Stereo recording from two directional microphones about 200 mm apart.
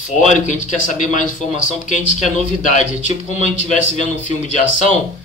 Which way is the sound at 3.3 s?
35° left (ahead or behind).